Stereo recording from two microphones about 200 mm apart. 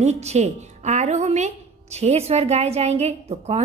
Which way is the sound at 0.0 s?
35° right (ahead or behind).